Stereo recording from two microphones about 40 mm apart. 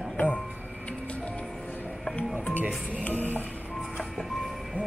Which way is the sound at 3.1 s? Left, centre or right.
Right.